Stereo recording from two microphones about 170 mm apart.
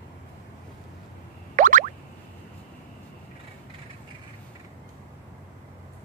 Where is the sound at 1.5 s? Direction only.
50° right (ahead or behind).